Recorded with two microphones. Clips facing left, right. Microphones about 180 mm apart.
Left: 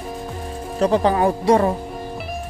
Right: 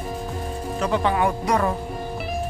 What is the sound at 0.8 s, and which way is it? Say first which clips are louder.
Speech: left 5 dB; 35° left (ahead or behind).